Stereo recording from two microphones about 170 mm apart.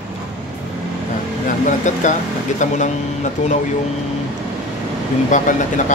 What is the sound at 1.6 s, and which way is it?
Speech, 45° left (ahead or behind).